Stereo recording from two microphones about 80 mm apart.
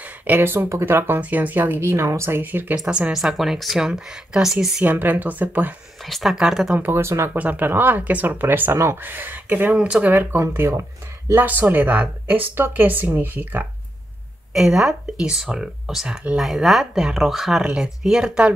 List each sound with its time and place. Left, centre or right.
0.0 s a woman's voice: right
2.8 s speech: centre
4.8 s a woman's voice: right
6.0 s speech: centre
6.7 s a woman's voice: right
7.0 s speech: right
7.3 s a woman's voice: right
10.3 s a woman's voice: right
14.5 s speech: centre